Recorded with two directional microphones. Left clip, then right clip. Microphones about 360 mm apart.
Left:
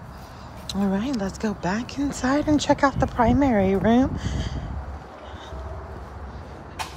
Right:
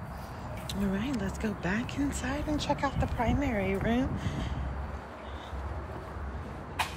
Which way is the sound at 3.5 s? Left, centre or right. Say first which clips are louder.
Left 10 dB; left.